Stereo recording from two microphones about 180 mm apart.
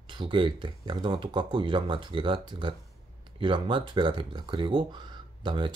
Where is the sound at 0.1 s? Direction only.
30° right (ahead or behind).